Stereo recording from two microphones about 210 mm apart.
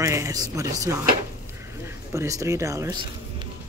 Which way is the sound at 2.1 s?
15° right (ahead or behind).